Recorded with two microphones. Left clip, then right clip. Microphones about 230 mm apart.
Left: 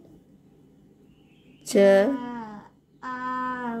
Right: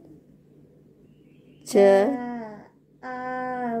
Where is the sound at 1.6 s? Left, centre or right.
Centre.